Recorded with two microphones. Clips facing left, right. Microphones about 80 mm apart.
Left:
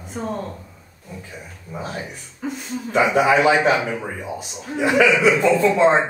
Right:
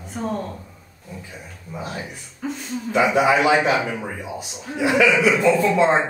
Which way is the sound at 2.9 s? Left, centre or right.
Left.